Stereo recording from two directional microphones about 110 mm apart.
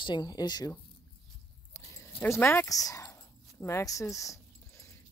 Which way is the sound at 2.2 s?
25° left (ahead or behind).